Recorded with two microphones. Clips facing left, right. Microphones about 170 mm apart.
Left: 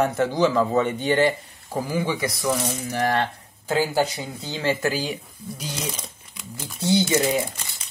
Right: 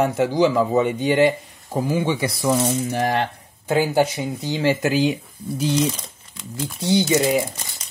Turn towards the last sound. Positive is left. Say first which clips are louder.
# right 3 dB
turn(degrees=-15)  # may be behind; listen again after turning